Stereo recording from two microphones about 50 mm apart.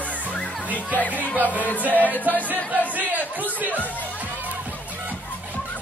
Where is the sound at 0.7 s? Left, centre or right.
Left.